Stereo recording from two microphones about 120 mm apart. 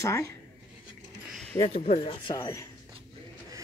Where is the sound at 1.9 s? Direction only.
50° left (ahead or behind).